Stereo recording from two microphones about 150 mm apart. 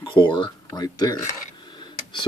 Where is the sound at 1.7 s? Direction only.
30° left (ahead or behind).